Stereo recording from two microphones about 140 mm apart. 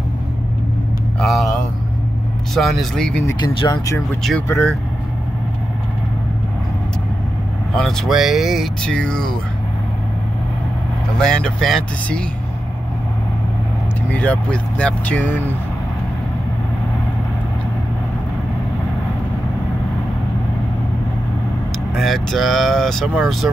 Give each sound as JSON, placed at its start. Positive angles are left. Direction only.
{"t": 1.2, "sound": "vehicle", "side_deg": 0}
{"t": 2.5, "sound": "speech", "side_deg": 0}
{"t": 3.3, "sound": "speech", "side_deg": 30}
{"t": 7.7, "sound": "speech", "side_deg": 5}
{"t": 11.1, "sound": "speech", "side_deg": 5}
{"t": 14.1, "sound": "speech", "side_deg": 10}
{"t": 21.9, "sound": "speech", "side_deg": 0}